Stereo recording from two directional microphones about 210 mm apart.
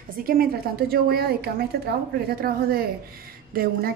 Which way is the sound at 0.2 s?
45° right (ahead or behind).